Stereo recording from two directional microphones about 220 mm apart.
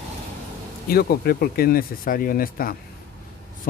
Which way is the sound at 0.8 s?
45° left (ahead or behind).